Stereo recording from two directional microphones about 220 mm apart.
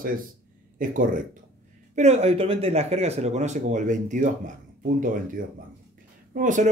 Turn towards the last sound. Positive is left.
turn(degrees=-35)  # may be behind; listen again after turning